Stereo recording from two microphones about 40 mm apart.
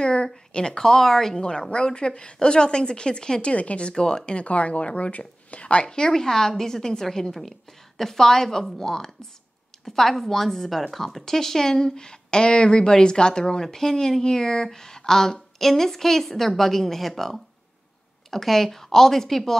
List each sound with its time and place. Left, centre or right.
0.0 s a woman's voice: left
1.4 s speech: left
3.5 s speech: left
4.3 s a woman's voice: left
5.9 s a woman's voice: centre